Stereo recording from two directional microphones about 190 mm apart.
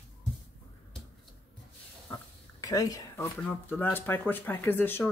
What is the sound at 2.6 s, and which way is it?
Speech, 20° left (ahead or behind).